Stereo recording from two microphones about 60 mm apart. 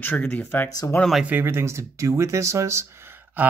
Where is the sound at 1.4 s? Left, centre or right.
Right.